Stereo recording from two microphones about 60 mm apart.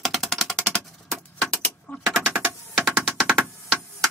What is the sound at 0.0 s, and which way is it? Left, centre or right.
Typewriter, centre.